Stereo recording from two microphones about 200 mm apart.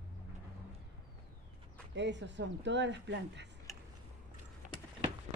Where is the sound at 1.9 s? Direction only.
60° right (ahead or behind).